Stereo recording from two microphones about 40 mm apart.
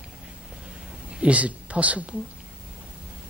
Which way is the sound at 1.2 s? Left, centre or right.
Right.